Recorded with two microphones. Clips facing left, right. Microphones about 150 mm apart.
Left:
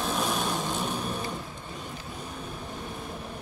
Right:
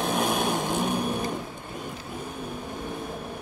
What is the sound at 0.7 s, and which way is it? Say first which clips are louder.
Vehicle: right 5 dB; 10° right (ahead or behind).